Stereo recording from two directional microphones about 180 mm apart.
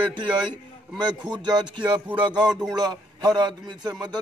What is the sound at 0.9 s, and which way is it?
Speech, 25° right (ahead or behind).